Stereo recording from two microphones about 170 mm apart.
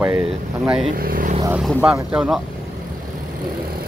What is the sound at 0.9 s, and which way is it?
Speech, 55° right (ahead or behind).